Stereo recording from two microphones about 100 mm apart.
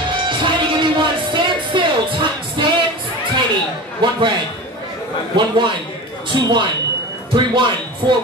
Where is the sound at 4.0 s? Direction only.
55° right (ahead or behind).